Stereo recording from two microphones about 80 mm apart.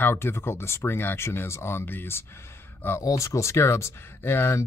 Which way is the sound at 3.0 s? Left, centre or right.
Left.